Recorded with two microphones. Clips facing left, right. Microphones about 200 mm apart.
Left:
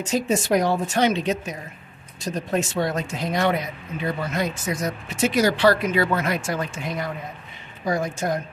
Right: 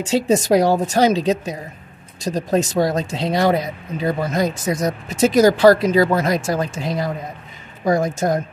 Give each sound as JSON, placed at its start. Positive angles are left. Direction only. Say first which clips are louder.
{"t": 0.0, "sound": "speech", "louder": "right 5 dB", "side_deg": -35}